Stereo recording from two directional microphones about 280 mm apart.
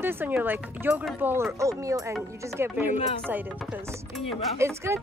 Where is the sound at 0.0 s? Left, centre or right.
Centre.